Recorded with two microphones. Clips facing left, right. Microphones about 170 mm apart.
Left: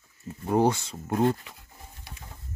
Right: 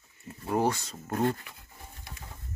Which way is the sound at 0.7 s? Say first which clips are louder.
Left 4 dB; 10° left (ahead or behind).